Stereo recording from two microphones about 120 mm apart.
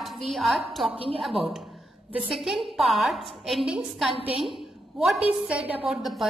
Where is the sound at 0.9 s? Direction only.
50° right (ahead or behind).